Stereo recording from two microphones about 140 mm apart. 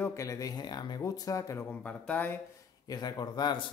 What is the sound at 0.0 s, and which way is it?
Speech, 20° left (ahead or behind).